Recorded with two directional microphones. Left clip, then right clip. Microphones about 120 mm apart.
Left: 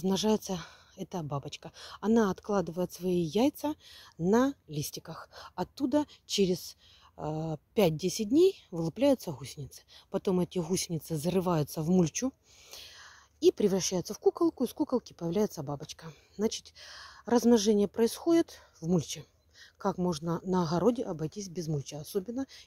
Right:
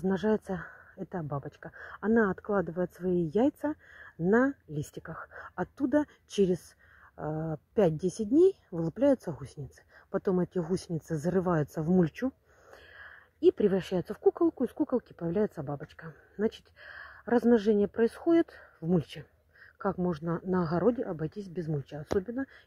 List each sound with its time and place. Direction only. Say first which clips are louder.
0.0 s speech: even; 20° left (ahead or behind)
5.9 s speech: right 2 dB; 35° left (ahead or behind)
7.2 s a sound: even; 20° left (ahead or behind)
8.2 s speech: right 1 dB; 40° left (ahead or behind)
9.2 s speech: right 1 dB; 10° left (ahead or behind)
19.8 s speech: even; 20° left (ahead or behind)